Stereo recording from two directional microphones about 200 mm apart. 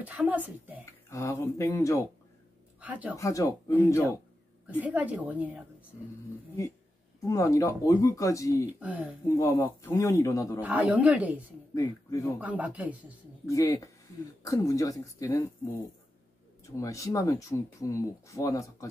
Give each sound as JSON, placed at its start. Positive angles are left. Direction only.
{"t": 0.0, "sound": "a woman's voice", "side_deg": -5}
{"t": 1.1, "sound": "speech", "side_deg": 15}
{"t": 2.8, "sound": "a woman's voice", "side_deg": -10}
{"t": 3.2, "sound": "speech", "side_deg": 15}
{"t": 4.6, "sound": "a woman's voice", "side_deg": -5}
{"t": 7.2, "sound": "speech", "side_deg": 15}
{"t": 8.7, "sound": "a woman's voice", "side_deg": -5}
{"t": 9.4, "sound": "speech", "side_deg": 15}
{"t": 10.6, "sound": "a woman's voice", "side_deg": -5}
{"t": 11.7, "sound": "speech", "side_deg": 15}
{"t": 12.4, "sound": "a woman's voice", "side_deg": -5}
{"t": 13.5, "sound": "speech", "side_deg": 15}